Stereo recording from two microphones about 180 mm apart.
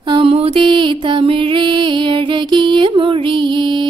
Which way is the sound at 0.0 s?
30° right (ahead or behind).